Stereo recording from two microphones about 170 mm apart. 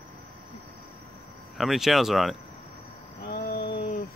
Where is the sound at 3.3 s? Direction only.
70° left (ahead or behind).